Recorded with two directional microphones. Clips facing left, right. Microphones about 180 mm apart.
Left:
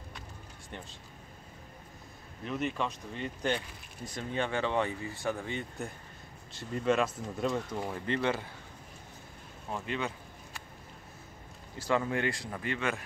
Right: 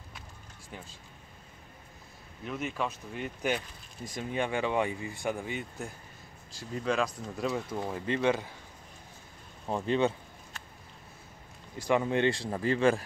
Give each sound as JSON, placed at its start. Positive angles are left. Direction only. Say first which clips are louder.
{"t": 2.4, "sound": "speech", "louder": "left 1 dB", "side_deg": -5}
{"t": 7.9, "sound": "speech", "louder": "right 4 dB", "side_deg": -15}
{"t": 9.7, "sound": "speech", "louder": "right 8 dB", "side_deg": -30}
{"t": 11.8, "sound": "speech", "louder": "right 4 dB", "side_deg": -15}